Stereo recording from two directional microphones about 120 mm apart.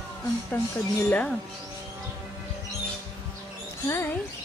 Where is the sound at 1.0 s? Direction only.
15° left (ahead or behind).